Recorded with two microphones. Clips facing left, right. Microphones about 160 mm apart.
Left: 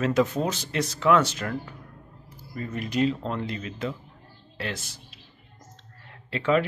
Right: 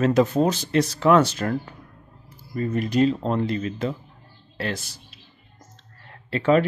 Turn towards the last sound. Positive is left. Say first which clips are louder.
# right 4 dB
turn(degrees=-40)  # may be behind; listen again after turning